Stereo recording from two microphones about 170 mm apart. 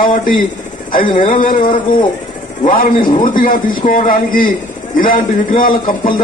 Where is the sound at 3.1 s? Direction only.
55° left (ahead or behind).